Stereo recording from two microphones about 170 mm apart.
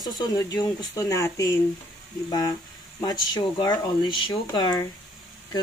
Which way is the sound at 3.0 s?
25° left (ahead or behind).